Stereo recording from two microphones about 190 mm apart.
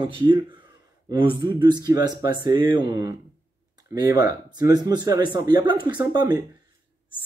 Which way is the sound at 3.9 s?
20° right (ahead or behind).